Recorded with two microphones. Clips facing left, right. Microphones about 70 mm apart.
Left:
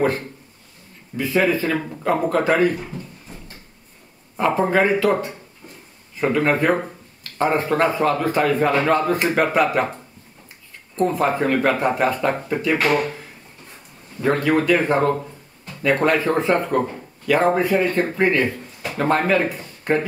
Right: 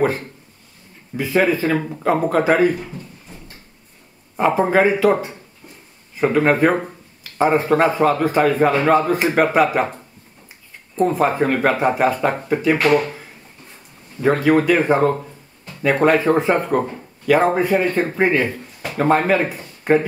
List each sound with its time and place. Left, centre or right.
1.1 s speech: centre
2.8 s a sound: centre
4.6 s speech: centre
11.0 s speech: centre
11.8 s speech: centre
14.2 s speech: centre